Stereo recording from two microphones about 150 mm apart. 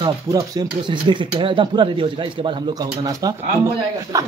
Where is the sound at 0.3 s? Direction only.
30° right (ahead or behind).